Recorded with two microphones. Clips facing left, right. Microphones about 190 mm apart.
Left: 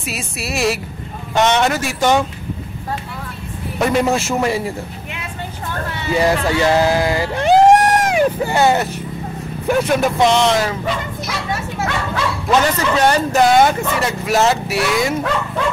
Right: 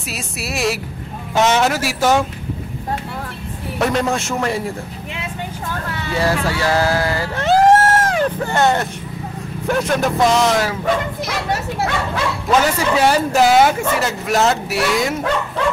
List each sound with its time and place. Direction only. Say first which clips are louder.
0.1 s speech: left 1 dB; centre (ahead or behind)
3.8 s speech: left 2 dB; 5° left (ahead or behind)
6.1 s speech: left 3 dB; 20° left (ahead or behind); by 10.8 s centre (ahead or behind)
12.4 s speech: even; 5° right (ahead or behind)